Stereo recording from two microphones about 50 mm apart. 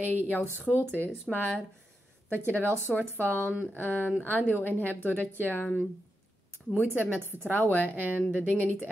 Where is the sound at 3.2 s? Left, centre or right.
Left.